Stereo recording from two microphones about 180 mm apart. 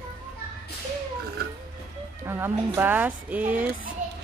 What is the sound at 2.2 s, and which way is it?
Speech, 15° right (ahead or behind).